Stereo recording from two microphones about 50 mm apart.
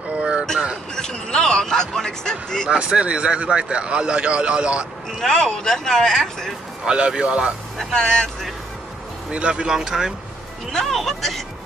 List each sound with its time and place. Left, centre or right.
0.2 s a sound: centre
0.9 s a sound: centre
2.9 s a man's voice: right
5.2 s speech: centre
6.9 s a man's voice: centre
7.8 s speech: centre
9.3 s a man's voice: right
10.7 s music: centre